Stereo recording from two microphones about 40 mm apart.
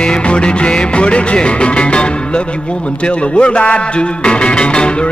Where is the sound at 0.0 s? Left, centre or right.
Left.